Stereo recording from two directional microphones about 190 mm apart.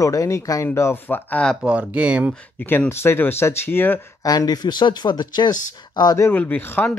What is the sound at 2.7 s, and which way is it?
Speech, 10° left (ahead or behind).